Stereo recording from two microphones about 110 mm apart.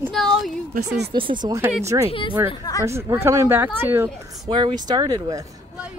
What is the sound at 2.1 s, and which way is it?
Speech, 50° left (ahead or behind).